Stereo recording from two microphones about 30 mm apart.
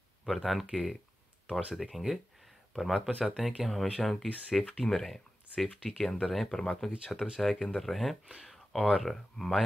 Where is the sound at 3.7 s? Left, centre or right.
Centre.